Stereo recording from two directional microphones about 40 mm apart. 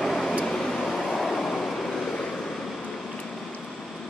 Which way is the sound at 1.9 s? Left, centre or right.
Centre.